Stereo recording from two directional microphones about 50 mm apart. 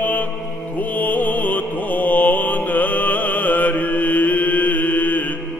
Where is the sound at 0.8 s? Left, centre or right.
Left.